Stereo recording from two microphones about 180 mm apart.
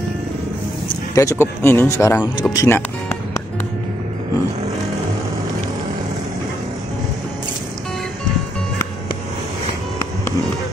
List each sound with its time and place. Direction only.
1.1 s speech: 15° left (ahead or behind)